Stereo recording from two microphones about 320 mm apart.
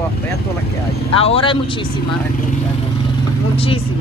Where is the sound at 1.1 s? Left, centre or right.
Centre.